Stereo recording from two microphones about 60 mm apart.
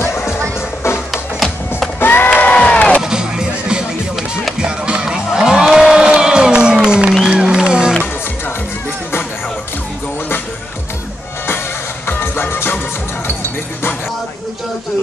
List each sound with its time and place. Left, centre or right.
0.0 s music: left
1.1 s music: centre
2.0 s a sound: left
2.3 s crowd: centre
3.0 s music: centre
12.1 s music: left